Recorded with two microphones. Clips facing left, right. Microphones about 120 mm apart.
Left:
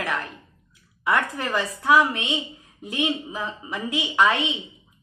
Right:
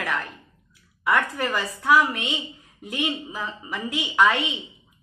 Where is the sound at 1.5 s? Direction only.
25° left (ahead or behind).